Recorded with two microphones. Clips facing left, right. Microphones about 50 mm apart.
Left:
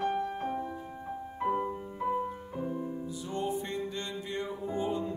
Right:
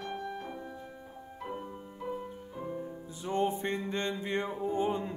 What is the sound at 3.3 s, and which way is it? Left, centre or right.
Music, right.